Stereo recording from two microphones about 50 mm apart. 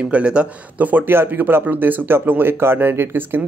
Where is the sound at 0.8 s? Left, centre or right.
Right.